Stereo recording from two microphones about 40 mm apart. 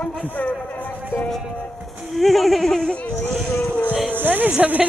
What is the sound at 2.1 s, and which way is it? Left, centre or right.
Speech, centre.